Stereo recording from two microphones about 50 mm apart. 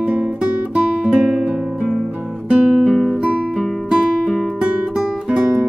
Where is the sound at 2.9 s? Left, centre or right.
Centre.